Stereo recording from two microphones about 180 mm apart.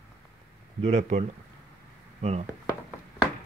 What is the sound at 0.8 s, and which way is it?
Speech, 35° right (ahead or behind).